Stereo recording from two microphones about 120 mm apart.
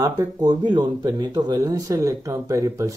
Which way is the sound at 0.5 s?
40° right (ahead or behind).